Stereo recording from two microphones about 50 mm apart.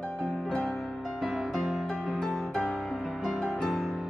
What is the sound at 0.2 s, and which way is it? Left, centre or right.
Music, centre.